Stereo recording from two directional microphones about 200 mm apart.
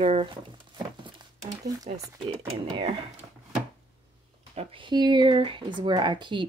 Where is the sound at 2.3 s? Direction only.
30° right (ahead or behind).